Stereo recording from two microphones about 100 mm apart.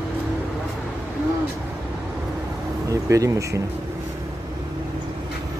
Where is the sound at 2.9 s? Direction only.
35° right (ahead or behind).